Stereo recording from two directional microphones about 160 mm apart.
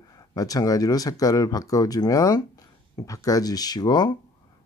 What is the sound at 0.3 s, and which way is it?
Speech, 20° left (ahead or behind).